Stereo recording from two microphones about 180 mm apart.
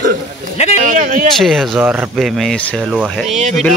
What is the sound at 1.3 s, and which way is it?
Speech, centre (ahead or behind).